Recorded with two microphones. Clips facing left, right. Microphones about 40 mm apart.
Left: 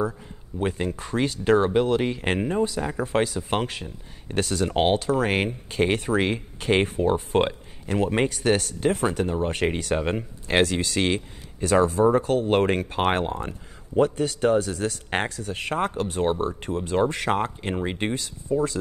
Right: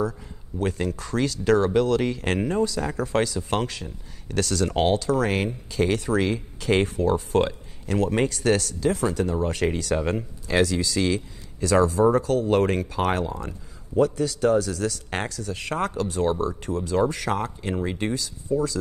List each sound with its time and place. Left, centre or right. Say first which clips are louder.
0.6 s speech: even; left
8.7 s speech: even; left
10.6 s speech: even; left
15.7 s speech: left 1 dB; left
16.0 s speech: even; left